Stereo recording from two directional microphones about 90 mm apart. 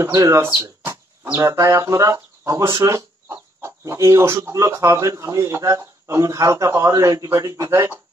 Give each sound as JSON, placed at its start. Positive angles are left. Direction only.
{"t": 0.0, "sound": "speech", "side_deg": -35}